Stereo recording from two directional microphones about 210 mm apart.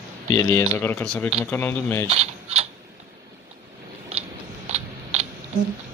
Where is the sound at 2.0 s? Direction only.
30° right (ahead or behind).